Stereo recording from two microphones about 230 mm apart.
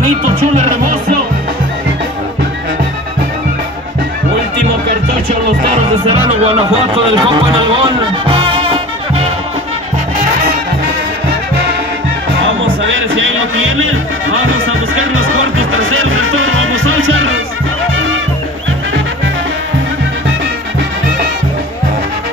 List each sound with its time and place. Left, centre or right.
6.0 s speech: right
12.4 s music: right